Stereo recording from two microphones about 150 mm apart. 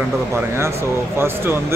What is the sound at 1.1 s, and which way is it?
Speech, 15° right (ahead or behind).